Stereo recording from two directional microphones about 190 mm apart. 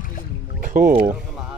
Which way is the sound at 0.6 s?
45° right (ahead or behind).